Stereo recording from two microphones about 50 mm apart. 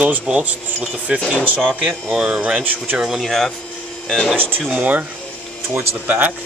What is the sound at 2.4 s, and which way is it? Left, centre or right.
Speech, right.